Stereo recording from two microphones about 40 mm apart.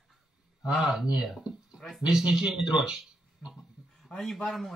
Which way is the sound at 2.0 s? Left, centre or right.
Centre.